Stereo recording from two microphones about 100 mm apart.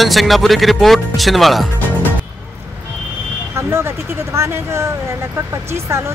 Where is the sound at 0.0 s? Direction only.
Centre (ahead or behind).